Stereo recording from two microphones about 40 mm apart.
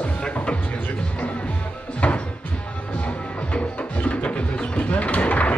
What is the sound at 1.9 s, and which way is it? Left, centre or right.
Music, left.